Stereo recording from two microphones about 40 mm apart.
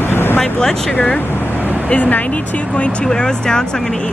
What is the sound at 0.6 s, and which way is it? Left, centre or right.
Speech, centre.